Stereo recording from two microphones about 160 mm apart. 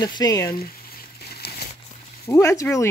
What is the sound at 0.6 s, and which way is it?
Frying, 70° left (ahead or behind).